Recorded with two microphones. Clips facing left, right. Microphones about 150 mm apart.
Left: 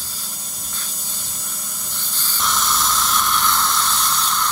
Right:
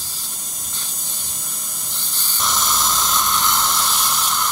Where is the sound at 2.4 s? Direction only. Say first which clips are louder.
Even; 20° right (ahead or behind).